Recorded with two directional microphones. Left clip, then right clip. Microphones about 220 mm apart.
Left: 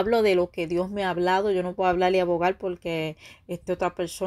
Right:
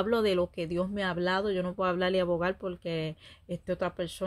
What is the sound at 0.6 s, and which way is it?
Speech, 20° right (ahead or behind).